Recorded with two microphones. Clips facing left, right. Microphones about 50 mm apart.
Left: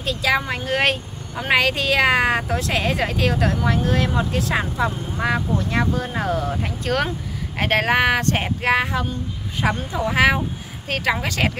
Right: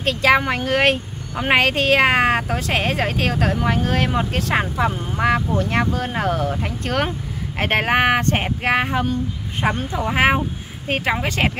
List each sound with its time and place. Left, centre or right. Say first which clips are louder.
0.0 s speech: right 4 dB; right
7.5 s speech: even; right
10.0 s speech: even; right